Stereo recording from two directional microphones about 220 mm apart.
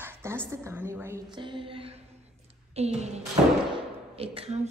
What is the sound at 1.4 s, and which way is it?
Speech, 20° right (ahead or behind).